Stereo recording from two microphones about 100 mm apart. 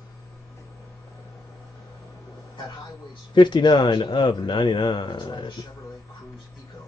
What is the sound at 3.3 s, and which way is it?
Speech, 50° left (ahead or behind).